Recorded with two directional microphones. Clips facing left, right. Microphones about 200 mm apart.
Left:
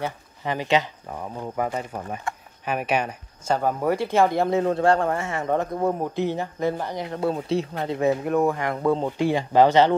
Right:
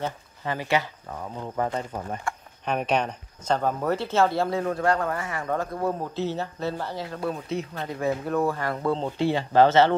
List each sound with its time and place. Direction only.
0.0 s speech: 15° left (ahead or behind)